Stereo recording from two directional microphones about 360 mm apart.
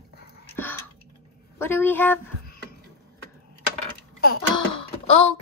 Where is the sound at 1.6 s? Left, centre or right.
Centre.